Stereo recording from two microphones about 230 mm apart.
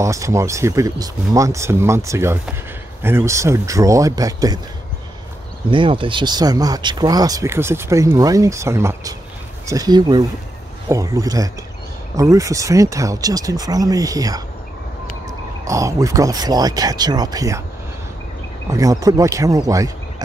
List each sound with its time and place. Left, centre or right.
0.0 s speech: centre
5.7 s speech: right
18.7 s speech: centre